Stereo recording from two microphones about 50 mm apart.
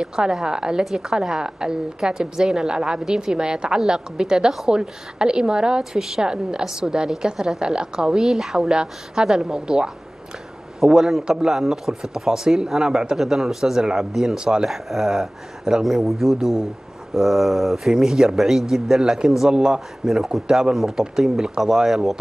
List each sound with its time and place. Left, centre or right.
0.0 s a woman's voice: centre
14.7 s a woman's voice: centre